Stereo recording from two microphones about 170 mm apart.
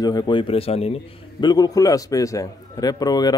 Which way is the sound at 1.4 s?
25° left (ahead or behind).